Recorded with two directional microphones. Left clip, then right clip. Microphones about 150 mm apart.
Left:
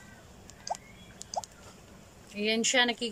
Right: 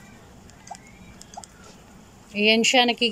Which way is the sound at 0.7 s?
35° left (ahead or behind).